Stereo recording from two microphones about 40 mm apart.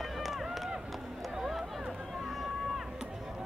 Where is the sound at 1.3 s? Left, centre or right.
Centre.